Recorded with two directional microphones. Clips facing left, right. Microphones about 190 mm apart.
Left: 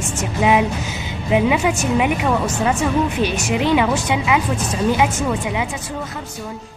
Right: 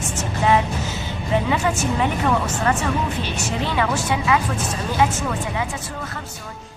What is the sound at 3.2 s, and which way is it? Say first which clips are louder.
A woman's voice: left 6 dB; 15° left (ahead or behind).